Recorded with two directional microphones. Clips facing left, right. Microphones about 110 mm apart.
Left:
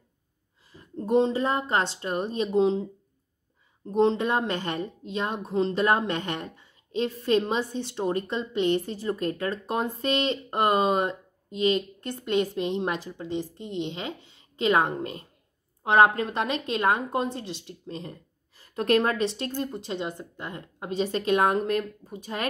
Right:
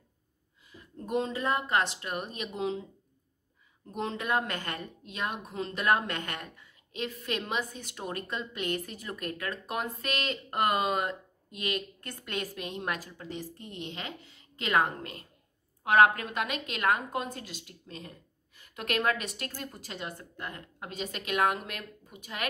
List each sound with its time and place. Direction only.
0.7 s a woman's voice: 30° left (ahead or behind)